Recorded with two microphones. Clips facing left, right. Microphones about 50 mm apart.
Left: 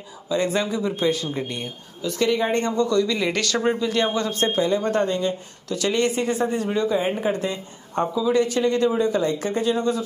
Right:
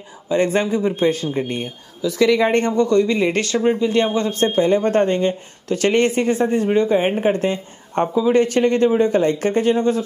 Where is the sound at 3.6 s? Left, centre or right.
Centre.